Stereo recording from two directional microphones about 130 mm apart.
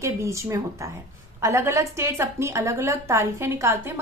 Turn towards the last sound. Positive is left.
turn(degrees=-20)  # may be behind; listen again after turning